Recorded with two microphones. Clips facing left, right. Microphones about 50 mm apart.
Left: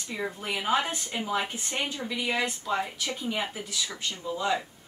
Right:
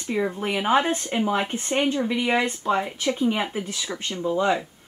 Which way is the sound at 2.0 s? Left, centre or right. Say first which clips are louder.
Right 7 dB; right.